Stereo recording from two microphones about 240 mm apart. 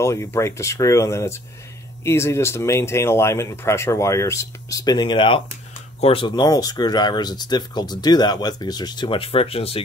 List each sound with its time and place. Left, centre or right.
0.0 s speech: centre